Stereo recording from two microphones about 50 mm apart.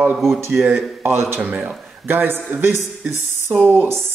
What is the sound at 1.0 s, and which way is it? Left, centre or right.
Speech, right.